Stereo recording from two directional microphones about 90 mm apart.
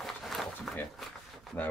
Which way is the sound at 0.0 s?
Centre (ahead or behind).